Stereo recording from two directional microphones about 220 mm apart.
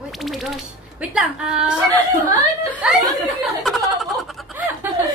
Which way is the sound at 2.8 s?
5° right (ahead or behind).